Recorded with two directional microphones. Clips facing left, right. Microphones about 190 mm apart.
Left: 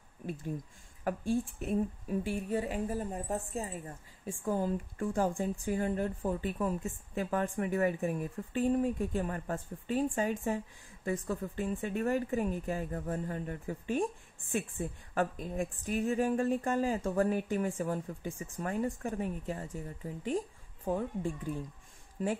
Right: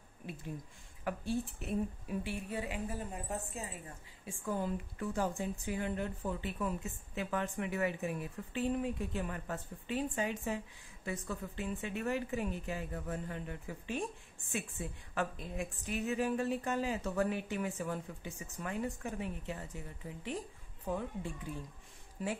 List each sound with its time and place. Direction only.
1.0 s a woman's voice: 45° left (ahead or behind)
20.9 s speech: 40° left (ahead or behind)
22.2 s speech: 40° left (ahead or behind)